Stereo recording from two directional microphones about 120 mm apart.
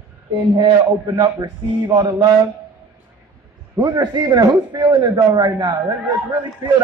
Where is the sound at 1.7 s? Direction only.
45° right (ahead or behind).